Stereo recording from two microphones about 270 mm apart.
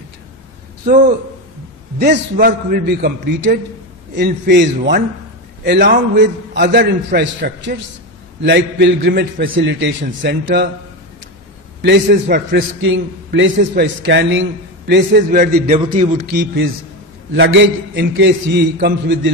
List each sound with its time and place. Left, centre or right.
0.8 s a man's voice: right
11.8 s a man's voice: right